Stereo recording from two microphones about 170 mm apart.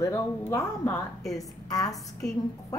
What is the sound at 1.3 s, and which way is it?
Speech, 20° left (ahead or behind).